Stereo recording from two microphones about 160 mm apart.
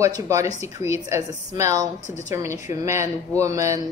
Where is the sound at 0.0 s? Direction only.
20° right (ahead or behind).